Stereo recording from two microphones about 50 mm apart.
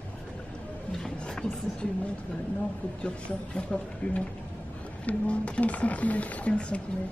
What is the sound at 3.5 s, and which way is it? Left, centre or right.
Speech, left.